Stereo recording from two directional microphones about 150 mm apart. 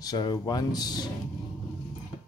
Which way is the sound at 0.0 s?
25° left (ahead or behind).